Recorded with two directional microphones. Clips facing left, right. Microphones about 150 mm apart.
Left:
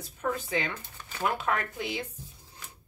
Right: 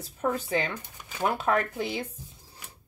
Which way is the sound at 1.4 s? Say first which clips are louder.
Right 4 dB; 35° right (ahead or behind).